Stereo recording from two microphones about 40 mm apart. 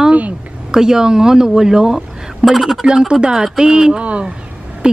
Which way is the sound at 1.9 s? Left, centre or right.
Centre.